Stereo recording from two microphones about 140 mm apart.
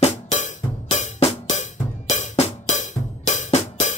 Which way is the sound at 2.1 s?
55° left (ahead or behind).